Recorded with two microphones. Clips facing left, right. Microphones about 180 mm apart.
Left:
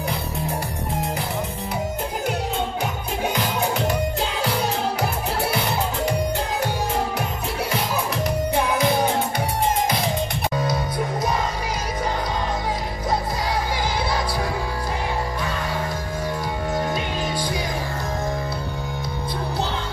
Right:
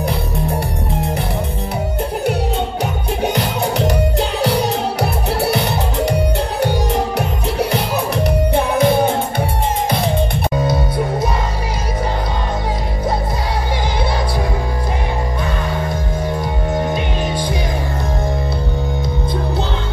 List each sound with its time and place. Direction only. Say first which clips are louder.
3.3 s music: right 5 dB; 70° right (ahead or behind)
7.7 s music: right 6 dB; 65° right (ahead or behind)
10.6 s music: right 6 dB; 25° right (ahead or behind)